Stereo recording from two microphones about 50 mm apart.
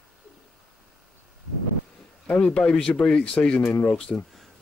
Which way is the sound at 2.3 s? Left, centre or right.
Centre.